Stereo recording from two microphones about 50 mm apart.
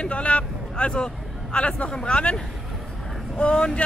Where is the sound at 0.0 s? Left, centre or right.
Left.